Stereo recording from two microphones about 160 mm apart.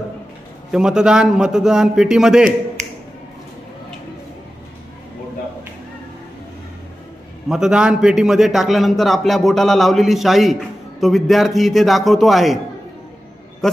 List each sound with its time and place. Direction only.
0.7 s a man's voice: 5° right (ahead or behind)
2.8 s finger snapping: 45° right (ahead or behind)
7.4 s a man's voice: 5° right (ahead or behind)